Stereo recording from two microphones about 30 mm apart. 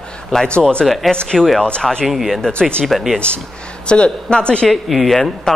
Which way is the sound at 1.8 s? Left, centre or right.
Left.